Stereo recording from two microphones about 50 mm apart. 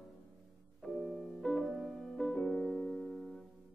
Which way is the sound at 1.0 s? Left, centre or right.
Centre.